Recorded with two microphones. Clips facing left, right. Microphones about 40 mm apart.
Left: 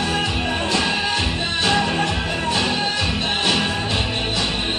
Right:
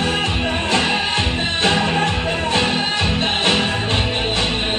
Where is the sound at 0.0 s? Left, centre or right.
Right.